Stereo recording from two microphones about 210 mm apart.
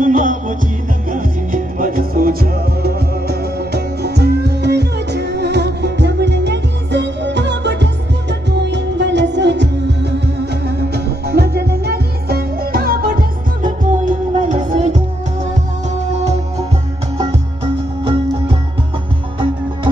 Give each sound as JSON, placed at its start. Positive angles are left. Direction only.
{"t": 0.0, "sound": "music", "side_deg": -40}